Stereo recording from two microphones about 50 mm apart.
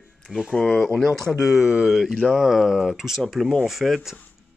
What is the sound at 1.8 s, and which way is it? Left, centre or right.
Speech, centre.